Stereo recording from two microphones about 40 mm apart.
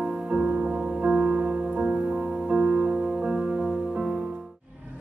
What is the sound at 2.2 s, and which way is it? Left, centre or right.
Music, centre.